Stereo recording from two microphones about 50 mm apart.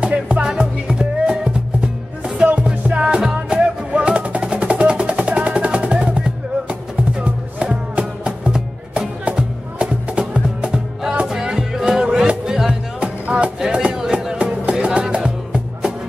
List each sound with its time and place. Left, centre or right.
0.0 s music: right
11.2 s music: centre
13.0 s music: right